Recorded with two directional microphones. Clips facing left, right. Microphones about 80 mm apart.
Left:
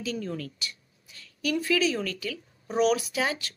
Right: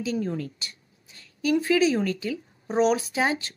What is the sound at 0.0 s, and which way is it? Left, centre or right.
A woman's voice, right.